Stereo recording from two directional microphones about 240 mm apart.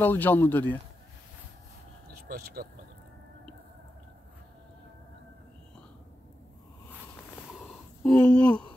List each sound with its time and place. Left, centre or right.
0.0 s speech: centre
2.1 s speech: right
7.6 s a sound: centre